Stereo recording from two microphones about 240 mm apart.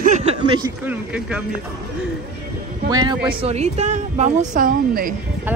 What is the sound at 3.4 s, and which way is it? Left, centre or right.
A woman's voice, right.